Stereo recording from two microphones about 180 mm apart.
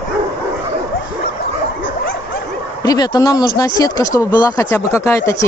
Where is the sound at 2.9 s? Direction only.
20° left (ahead or behind).